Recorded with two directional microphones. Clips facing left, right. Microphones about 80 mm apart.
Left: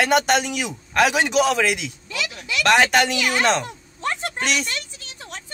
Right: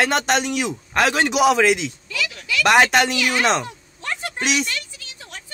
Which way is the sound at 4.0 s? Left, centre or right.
Left.